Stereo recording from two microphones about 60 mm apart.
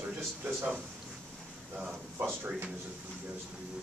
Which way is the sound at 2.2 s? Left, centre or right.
Right.